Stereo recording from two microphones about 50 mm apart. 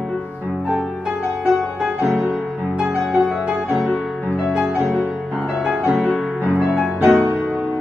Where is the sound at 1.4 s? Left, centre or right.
Centre.